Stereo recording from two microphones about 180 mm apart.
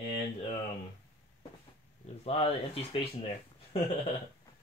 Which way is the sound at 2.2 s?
35° left (ahead or behind).